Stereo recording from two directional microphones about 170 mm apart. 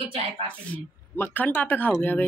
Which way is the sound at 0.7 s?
10° left (ahead or behind).